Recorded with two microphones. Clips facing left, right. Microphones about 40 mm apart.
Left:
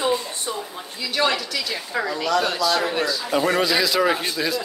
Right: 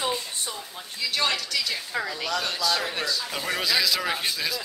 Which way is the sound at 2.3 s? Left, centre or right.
Centre.